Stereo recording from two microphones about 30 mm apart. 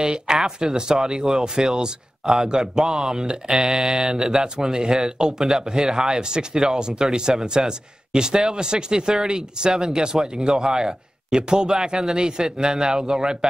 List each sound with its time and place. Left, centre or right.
0.0 s speech: right